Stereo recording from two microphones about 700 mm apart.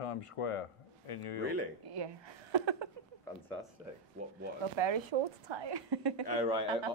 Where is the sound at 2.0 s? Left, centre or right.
Right.